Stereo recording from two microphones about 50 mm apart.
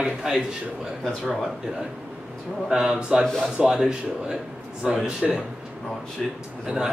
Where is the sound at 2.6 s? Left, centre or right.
Centre.